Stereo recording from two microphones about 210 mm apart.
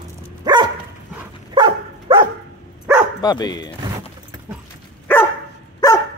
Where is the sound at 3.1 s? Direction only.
20° left (ahead or behind).